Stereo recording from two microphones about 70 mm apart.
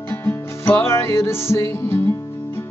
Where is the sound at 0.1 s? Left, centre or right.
Left.